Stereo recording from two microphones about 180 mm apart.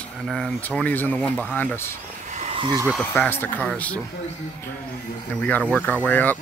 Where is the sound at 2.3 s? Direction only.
35° right (ahead or behind).